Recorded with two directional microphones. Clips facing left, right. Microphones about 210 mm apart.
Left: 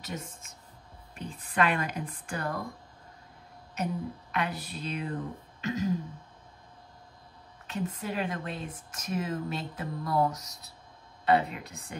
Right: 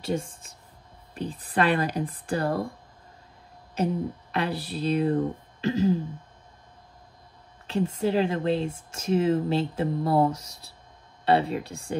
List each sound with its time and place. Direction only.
0.0 s speech: 30° right (ahead or behind)
3.7 s speech: 30° right (ahead or behind)
7.6 s speech: 30° right (ahead or behind)